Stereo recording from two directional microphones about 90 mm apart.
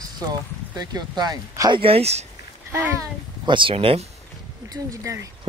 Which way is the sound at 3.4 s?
65° right (ahead or behind).